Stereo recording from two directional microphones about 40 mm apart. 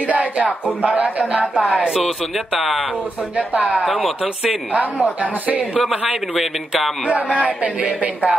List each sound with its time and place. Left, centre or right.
0.0 s a sound: right
0.8 s speech: right
2.3 s speech: centre
3.3 s speech: right
7.1 s speech: right